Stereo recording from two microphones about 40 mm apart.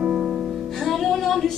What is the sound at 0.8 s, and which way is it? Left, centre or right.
Music, centre.